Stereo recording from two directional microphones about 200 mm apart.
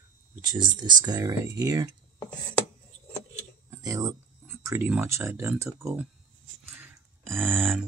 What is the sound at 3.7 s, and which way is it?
Speech, 15° right (ahead or behind).